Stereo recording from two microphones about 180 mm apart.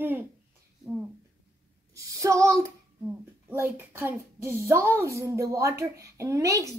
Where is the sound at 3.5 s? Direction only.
10° right (ahead or behind).